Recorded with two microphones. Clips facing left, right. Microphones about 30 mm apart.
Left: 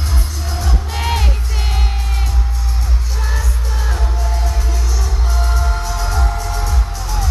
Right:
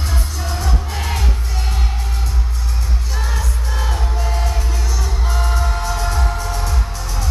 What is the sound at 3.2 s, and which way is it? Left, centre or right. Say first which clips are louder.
Music: left 2 dB; centre.